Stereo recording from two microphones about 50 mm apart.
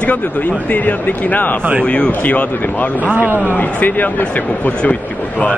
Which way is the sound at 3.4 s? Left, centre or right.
Left.